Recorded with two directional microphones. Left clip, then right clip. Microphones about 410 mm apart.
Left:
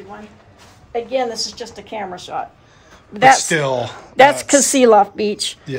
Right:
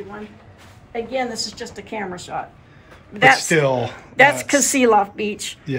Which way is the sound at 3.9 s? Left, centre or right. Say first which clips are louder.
Left 4 dB; left.